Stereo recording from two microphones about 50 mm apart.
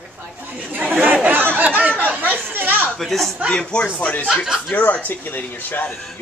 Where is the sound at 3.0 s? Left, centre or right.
Centre.